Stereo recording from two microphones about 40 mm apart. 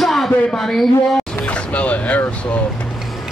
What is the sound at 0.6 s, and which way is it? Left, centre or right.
Speech, centre.